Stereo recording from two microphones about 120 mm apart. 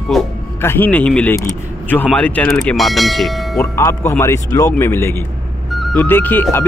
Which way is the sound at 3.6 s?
20° left (ahead or behind).